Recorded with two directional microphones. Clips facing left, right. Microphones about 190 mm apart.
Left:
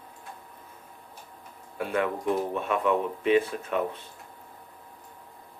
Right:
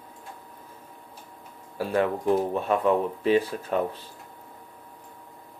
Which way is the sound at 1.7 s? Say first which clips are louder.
Right 3 dB; 35° right (ahead or behind).